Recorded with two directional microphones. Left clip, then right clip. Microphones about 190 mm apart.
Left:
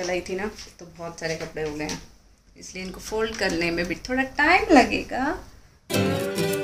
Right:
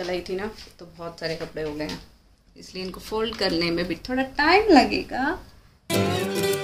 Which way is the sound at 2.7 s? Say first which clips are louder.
Even; 20° right (ahead or behind).